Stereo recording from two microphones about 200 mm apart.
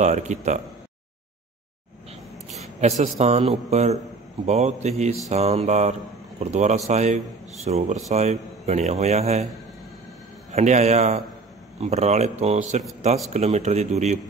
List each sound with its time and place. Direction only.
0.0 s speech: 35° right (ahead or behind)
2.8 s speech: 35° right (ahead or behind)
10.5 s speech: 35° right (ahead or behind)